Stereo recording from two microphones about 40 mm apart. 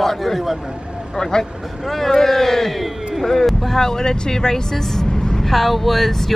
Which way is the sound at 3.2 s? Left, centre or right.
Centre.